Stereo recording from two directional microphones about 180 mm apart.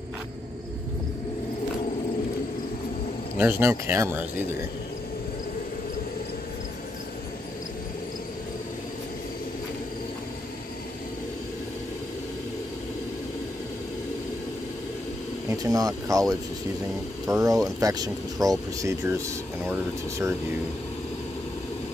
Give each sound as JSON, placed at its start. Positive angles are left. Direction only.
{"t": 3.3, "sound": "speech", "side_deg": -10}
{"t": 15.5, "sound": "speech", "side_deg": -20}